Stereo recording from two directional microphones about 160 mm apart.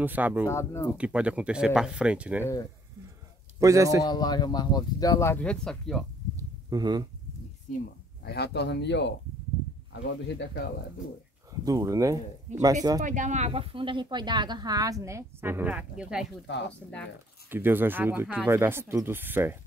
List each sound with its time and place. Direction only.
0.0 s speech: 10° right (ahead or behind)
0.5 s speech: 15° left (ahead or behind)
0.9 s speech: 5° right (ahead or behind)
3.5 s a man's voice: 20° right (ahead or behind)
4.0 s speech: 25° left (ahead or behind); by 6.0 s 5° left (ahead or behind)
6.3 s a sound: 25° right (ahead or behind)
8.2 s speech: 85° left
10.2 s speech: 90° left
11.6 s speech: 20° right (ahead or behind)
12.5 s speech: 45° right (ahead or behind); by 16.3 s 5° right (ahead or behind)
16.5 s speech: 90° left
17.5 s speech: 15° right (ahead or behind)